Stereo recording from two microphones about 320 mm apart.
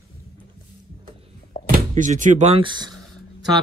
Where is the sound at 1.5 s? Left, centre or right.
Left.